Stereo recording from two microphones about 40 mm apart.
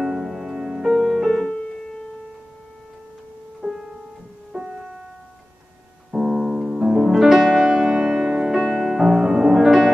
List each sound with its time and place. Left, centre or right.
0.0 s music: centre
3.6 s music: centre
6.1 s music: centre